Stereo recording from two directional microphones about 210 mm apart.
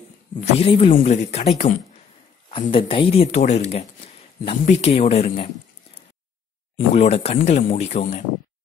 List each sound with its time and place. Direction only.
0.6 s speech: 25° left (ahead or behind)
7.0 s speech: 30° left (ahead or behind)